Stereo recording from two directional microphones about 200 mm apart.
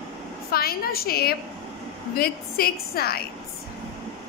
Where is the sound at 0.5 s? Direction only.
50° left (ahead or behind).